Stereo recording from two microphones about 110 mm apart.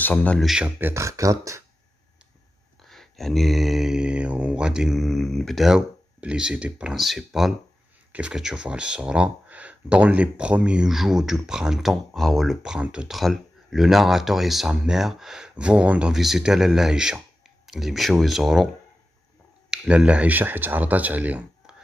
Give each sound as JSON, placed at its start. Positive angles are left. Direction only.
{"t": 0.0, "sound": "speech", "side_deg": 15}
{"t": 0.4, "sound": "speech", "side_deg": -5}
{"t": 0.7, "sound": "speech", "side_deg": -20}
{"t": 2.8, "sound": "speech", "side_deg": 0}
{"t": 19.7, "sound": "speech", "side_deg": -5}